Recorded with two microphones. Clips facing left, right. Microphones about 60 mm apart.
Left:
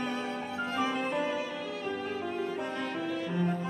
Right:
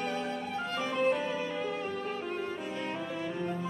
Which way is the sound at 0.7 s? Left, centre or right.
Centre.